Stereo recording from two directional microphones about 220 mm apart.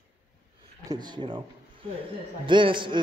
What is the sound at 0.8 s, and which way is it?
A man's voice, 20° right (ahead or behind).